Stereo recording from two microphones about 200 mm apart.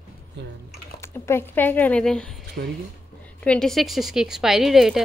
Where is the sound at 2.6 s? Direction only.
55° right (ahead or behind).